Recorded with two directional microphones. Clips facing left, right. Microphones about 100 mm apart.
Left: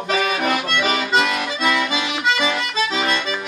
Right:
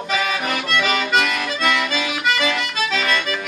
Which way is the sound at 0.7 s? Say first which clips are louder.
Even; 30° left (ahead or behind).